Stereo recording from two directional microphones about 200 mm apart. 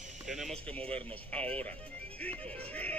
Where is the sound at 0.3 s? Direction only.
Centre (ahead or behind).